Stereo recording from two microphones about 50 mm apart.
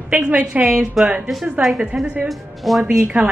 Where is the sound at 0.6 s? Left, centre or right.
Centre.